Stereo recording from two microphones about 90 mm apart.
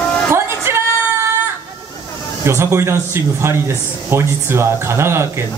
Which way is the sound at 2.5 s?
30° right (ahead or behind).